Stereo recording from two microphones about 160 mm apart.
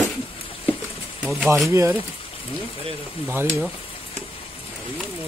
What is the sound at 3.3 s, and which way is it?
Speech, 15° right (ahead or behind).